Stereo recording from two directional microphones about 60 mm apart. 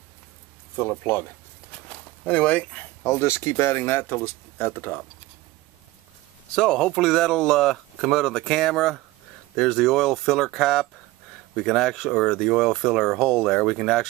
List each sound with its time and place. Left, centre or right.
0.7 s speech: left
1.7 s a sound: left
3.1 s speech: left
6.5 s speech: centre